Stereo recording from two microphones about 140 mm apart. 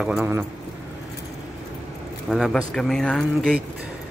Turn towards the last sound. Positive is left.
turn(degrees=5)  # may be behind; listen again after turning